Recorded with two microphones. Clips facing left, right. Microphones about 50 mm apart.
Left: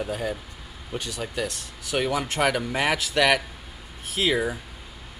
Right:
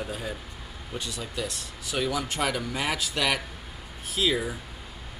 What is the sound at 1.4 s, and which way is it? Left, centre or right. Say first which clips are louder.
Speech: left 2 dB; left.